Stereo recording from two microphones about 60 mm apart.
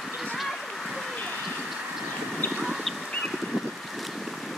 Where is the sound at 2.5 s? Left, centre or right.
Centre.